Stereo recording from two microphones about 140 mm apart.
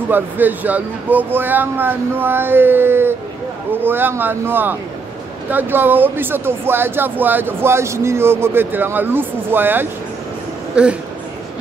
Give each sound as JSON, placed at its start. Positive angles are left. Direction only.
{"t": 0.1, "sound": "speech", "side_deg": -15}